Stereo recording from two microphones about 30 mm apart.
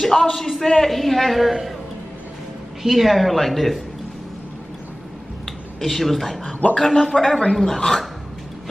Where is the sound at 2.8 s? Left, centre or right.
Centre.